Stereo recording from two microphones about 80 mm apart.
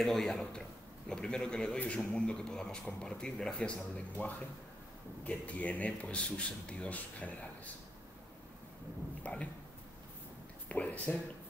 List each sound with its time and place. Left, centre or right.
0.0 s a man's voice: centre
9.2 s speech: centre
10.7 s speech: centre